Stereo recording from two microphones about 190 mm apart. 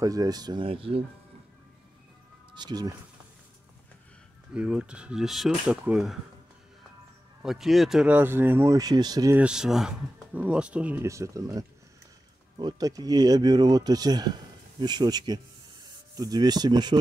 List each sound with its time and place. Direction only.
0.0 s speech: 20° right (ahead or behind)
2.5 s speech: 20° right (ahead or behind)
4.6 s speech: 5° right (ahead or behind)
7.4 s speech: centre (ahead or behind); by 9.4 s 20° right (ahead or behind)
9.4 s speech: 5° right (ahead or behind); by 16.9 s 20° right (ahead or behind)